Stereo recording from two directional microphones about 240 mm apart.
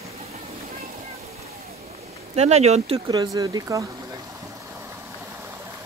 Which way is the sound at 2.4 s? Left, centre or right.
Right.